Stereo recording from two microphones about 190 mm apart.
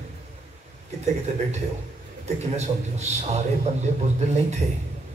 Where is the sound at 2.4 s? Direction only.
35° right (ahead or behind).